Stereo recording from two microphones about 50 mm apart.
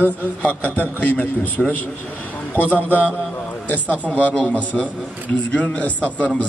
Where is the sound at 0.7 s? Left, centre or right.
Left.